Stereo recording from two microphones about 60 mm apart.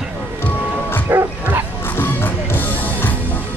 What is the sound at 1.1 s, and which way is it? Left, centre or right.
Bow-wow, right.